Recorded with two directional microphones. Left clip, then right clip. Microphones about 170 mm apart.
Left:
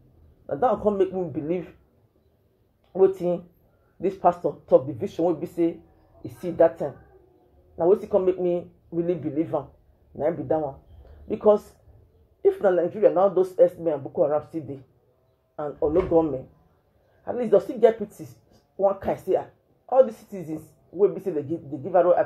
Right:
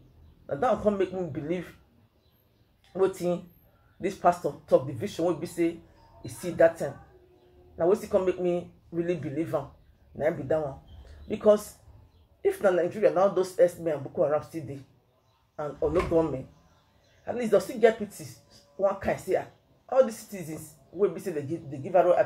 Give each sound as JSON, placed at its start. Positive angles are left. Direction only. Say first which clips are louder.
{"t": 0.5, "sound": "speech", "louder": "left 3 dB", "side_deg": 15}
{"t": 3.2, "sound": "speech", "louder": "left 3 dB", "side_deg": 20}